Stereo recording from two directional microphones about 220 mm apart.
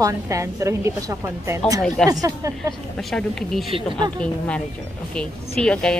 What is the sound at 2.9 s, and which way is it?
Speech, centre (ahead or behind).